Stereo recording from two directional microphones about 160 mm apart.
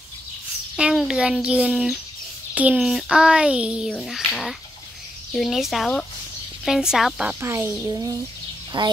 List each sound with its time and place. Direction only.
0.7 s a child's voice: 5° right (ahead or behind)
7.3 s a child's voice: 15° right (ahead or behind)
8.7 s a woman's voice: 30° right (ahead or behind)